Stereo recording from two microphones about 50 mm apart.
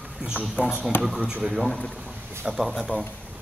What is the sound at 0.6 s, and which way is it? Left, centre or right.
Speech, left.